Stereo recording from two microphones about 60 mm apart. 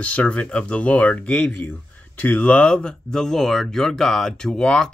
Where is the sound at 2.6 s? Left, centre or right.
Centre.